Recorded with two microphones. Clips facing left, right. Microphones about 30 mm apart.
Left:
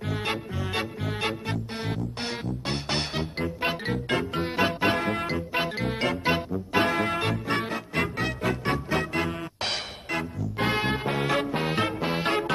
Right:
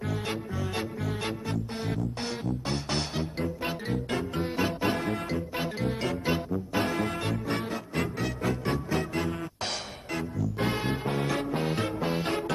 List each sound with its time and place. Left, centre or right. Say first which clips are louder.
0.1 s music: left 6 dB; left